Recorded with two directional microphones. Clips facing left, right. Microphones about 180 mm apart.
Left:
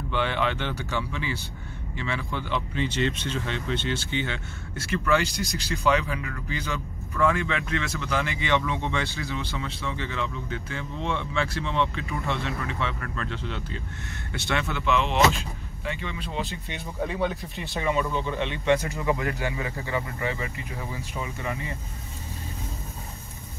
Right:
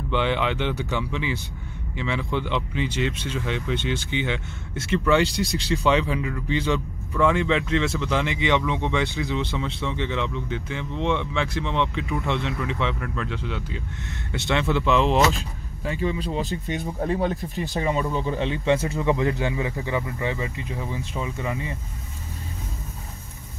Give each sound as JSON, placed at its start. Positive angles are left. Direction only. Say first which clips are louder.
{"t": 0.1, "sound": "speech", "louder": "right 3 dB", "side_deg": -20}
{"t": 5.3, "sound": "speech", "louder": "right 5 dB", "side_deg": 0}
{"t": 5.7, "sound": "speech", "louder": "right 2 dB", "side_deg": -25}
{"t": 14.3, "sound": "speech", "louder": "right 6 dB", "side_deg": -25}